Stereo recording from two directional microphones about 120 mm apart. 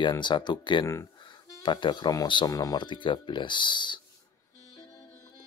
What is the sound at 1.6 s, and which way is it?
Speech, 40° left (ahead or behind).